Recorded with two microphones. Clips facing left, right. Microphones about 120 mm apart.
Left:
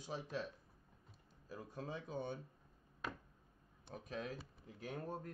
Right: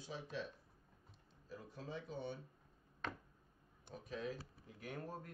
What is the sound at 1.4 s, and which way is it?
Speech, 50° left (ahead or behind).